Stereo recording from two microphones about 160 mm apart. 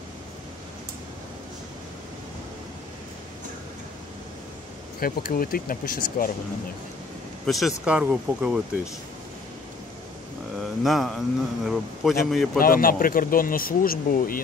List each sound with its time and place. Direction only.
5.0 s speech: 65° left (ahead or behind)
7.4 s a man's voice: centre (ahead or behind)
10.6 s a man's voice: centre (ahead or behind)
12.5 s speech: 65° left (ahead or behind)